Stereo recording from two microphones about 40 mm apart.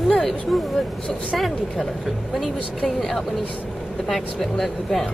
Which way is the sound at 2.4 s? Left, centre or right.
Centre.